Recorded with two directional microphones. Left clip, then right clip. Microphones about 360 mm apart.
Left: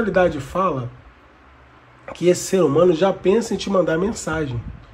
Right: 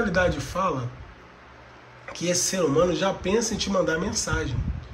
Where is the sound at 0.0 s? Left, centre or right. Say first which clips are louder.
Left 5 dB; centre.